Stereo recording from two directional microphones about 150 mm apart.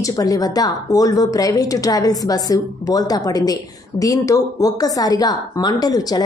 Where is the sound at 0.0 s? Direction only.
25° left (ahead or behind).